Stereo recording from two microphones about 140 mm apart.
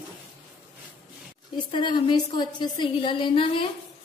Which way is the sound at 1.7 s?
35° left (ahead or behind).